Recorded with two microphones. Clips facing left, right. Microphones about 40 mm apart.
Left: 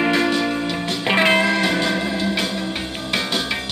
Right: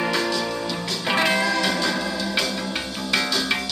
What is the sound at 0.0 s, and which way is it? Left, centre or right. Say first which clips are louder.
Music: left 5 dB; left.